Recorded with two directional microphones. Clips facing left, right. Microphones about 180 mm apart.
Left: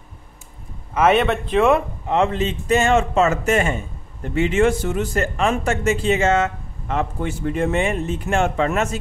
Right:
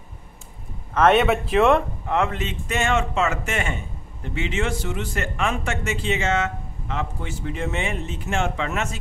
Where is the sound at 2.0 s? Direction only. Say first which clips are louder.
Left 4 dB; 25° left (ahead or behind).